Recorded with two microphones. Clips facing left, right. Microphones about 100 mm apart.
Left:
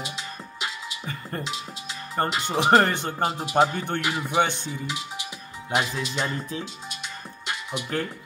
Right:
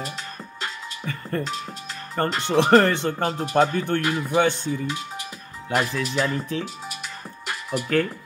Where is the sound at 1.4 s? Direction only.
Centre (ahead or behind).